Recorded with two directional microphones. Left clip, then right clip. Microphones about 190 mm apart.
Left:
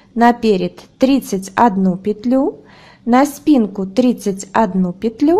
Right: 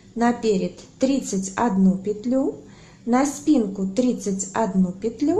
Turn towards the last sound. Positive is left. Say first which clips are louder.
# left 8 dB
turn(degrees=45)  # may be behind; listen again after turning